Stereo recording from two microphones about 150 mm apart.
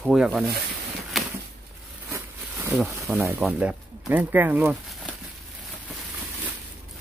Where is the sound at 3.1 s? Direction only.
Centre (ahead or behind).